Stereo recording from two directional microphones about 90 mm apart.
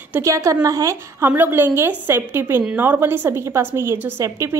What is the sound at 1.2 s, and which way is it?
A woman's voice, 25° right (ahead or behind).